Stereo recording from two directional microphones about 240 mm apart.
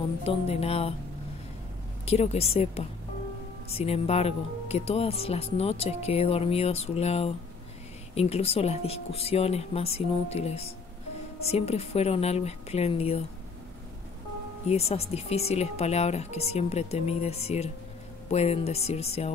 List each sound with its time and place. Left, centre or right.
0.2 s speech: left
2.0 s speech: left
14.7 s speech: left